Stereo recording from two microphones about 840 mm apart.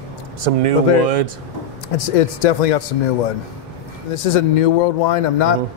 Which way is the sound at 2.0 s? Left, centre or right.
Left.